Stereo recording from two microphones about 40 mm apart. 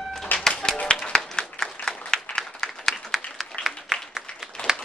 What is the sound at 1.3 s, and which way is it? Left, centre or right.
Applause, centre.